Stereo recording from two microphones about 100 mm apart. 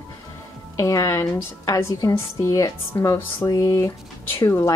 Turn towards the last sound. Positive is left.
turn(degrees=25)  # may be behind; listen again after turning